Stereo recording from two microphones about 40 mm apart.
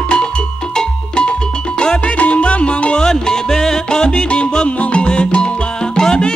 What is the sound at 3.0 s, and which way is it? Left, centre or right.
Music, centre.